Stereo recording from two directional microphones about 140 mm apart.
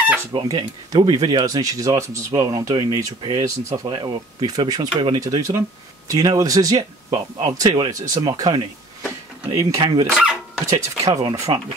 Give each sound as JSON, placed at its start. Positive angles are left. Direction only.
{"t": 0.3, "sound": "speech", "side_deg": -35}
{"t": 10.1, "sound": "dog", "side_deg": -5}
{"t": 10.7, "sound": "speech", "side_deg": -25}